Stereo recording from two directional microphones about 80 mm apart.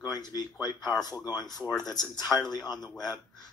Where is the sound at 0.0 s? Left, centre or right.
Left.